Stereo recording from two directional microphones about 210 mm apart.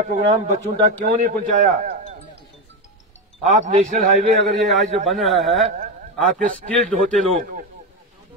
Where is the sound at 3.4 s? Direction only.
35° right (ahead or behind).